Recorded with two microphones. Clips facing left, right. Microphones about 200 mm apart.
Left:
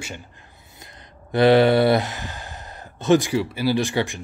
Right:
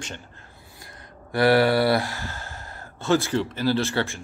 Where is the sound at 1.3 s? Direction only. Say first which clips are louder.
Left 4 dB; 20° left (ahead or behind).